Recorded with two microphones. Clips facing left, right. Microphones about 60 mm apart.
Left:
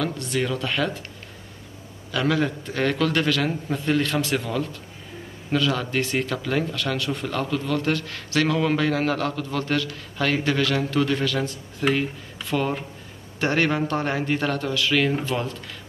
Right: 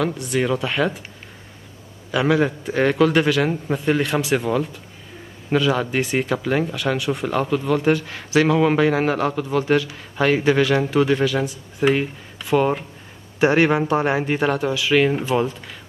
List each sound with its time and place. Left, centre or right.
0.0 s speech: centre
2.0 s speech: centre